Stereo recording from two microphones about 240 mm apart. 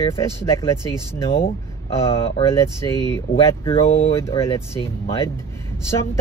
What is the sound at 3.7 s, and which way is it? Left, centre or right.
Speech, left.